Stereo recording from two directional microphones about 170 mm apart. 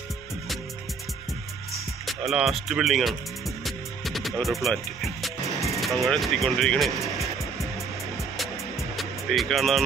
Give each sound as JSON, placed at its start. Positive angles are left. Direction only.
{"t": 2.0, "sound": "speech", "side_deg": 0}
{"t": 3.6, "sound": "music", "side_deg": 0}
{"t": 8.9, "sound": "music", "side_deg": 0}